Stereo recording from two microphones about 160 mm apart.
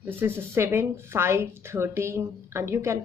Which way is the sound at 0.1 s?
15° right (ahead or behind).